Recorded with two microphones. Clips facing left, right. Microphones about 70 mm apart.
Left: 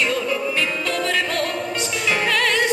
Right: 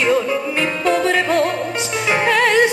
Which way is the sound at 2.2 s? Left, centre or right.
Right.